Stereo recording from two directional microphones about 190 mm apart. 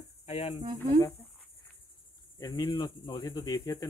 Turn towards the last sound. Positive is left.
turn(degrees=20)  # may be behind; listen again after turning